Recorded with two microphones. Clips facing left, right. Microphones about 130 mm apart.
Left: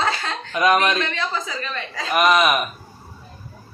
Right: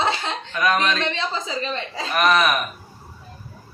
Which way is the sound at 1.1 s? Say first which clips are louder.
Even; 25° right (ahead or behind).